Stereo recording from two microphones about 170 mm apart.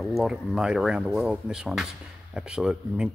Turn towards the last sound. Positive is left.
turn(degrees=-5)  # may be behind; listen again after turning